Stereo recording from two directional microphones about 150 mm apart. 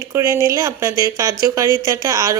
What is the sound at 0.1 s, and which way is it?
A woman's voice, 20° right (ahead or behind).